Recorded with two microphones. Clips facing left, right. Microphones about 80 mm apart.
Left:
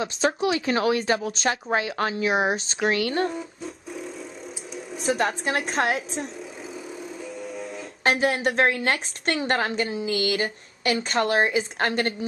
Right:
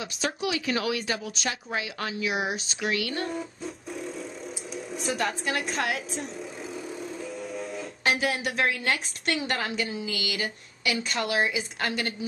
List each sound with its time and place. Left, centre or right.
0.0 s speech: left
3.3 s music: centre
4.7 s a sound: centre
5.4 s a woman's voice: left
6.7 s music: centre
8.0 s speech: left